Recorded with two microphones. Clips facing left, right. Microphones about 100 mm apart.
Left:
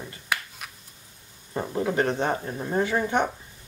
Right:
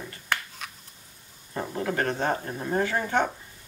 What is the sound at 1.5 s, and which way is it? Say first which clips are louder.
Speech: left 3 dB; 15° left (ahead or behind).